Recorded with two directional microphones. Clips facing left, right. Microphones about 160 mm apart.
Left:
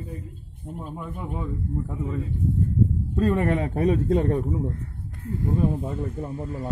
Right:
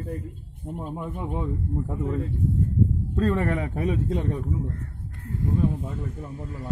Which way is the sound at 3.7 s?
40° left (ahead or behind).